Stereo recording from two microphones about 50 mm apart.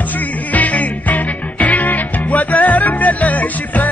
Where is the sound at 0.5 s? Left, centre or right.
Left.